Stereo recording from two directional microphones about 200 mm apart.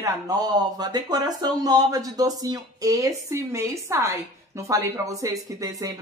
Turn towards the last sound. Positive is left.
turn(degrees=-15)  # may be behind; listen again after turning